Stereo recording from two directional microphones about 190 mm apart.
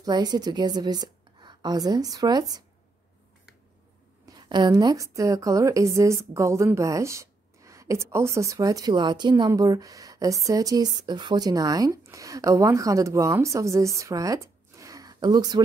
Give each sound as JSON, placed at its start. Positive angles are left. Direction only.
{"t": 0.0, "sound": "a woman's voice", "side_deg": -20}
{"t": 4.3, "sound": "a woman's voice", "side_deg": -20}